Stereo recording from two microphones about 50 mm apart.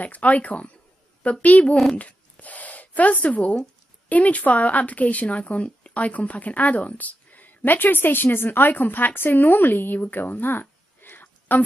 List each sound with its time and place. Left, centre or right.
0.0 s speech: left
2.0 s gasp: left
4.1 s speech: left